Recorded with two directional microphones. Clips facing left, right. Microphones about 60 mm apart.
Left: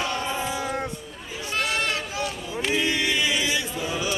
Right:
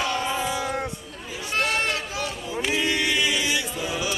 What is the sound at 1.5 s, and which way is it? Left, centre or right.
Sheep, right.